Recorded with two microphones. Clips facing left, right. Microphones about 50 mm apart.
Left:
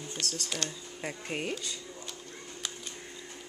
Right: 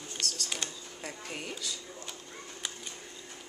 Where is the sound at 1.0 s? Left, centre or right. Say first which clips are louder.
Left 5 dB; left.